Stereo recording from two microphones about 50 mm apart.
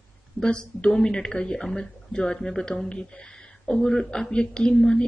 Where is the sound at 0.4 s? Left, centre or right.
Centre.